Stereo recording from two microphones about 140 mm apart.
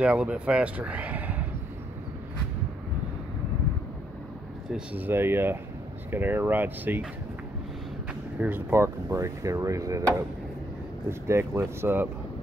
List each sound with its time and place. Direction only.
0.0 s speech: 10° right (ahead or behind)
4.6 s speech: 10° right (ahead or behind)
8.4 s speech: 10° right (ahead or behind)
11.1 s speech: 20° right (ahead or behind)